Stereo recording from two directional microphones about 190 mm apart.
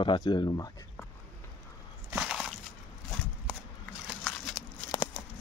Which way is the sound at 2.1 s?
5° right (ahead or behind).